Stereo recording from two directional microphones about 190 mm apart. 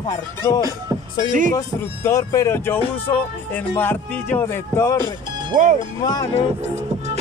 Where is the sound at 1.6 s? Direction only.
15° left (ahead or behind).